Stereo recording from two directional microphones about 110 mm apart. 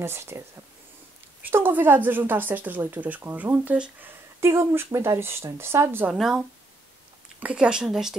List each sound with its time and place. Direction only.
0.0 s speech: 20° right (ahead or behind)
1.4 s speech: 15° right (ahead or behind)
4.4 s speech: 25° right (ahead or behind)
6.1 s speech: 5° right (ahead or behind)